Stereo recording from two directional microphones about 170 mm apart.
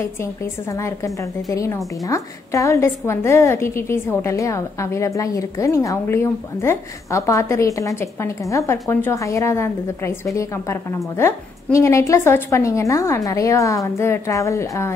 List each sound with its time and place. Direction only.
0.0 s a woman's voice: 15° left (ahead or behind)